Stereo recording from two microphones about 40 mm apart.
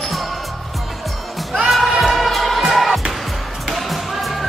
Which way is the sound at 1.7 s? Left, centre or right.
Centre.